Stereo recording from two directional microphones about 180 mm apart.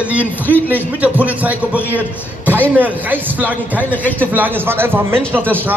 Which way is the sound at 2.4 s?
10° left (ahead or behind).